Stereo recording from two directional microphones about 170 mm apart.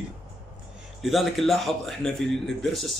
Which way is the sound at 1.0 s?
Centre (ahead or behind).